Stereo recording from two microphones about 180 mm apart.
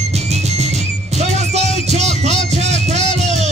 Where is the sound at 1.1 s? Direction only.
40° right (ahead or behind).